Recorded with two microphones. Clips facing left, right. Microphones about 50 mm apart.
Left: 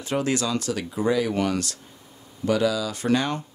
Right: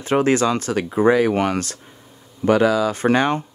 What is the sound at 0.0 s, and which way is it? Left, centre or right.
Speech, right.